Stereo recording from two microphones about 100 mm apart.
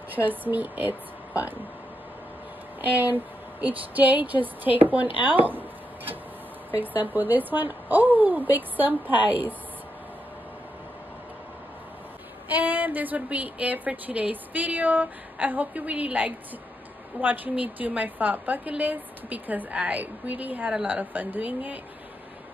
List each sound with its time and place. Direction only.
0.1 s speech: 20° right (ahead or behind)
2.8 s a woman's voice: 15° right (ahead or behind)
5.2 s a sound: 15° right (ahead or behind)
6.7 s a woman's voice: 15° right (ahead or behind)
12.4 s a woman's voice: 15° right (ahead or behind)